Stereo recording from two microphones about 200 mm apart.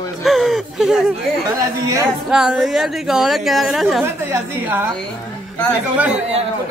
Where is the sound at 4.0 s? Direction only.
10° right (ahead or behind).